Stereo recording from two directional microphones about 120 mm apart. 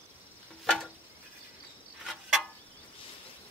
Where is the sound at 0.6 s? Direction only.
Centre (ahead or behind).